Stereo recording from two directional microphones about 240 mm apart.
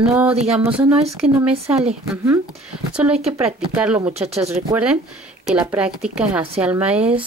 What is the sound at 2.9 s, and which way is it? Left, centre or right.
Speech, centre.